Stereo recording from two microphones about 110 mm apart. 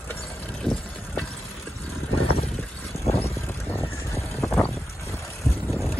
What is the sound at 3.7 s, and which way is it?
Vehicle, 25° left (ahead or behind).